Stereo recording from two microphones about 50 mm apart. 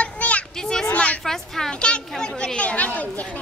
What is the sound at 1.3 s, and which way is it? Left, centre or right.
A woman's voice, centre.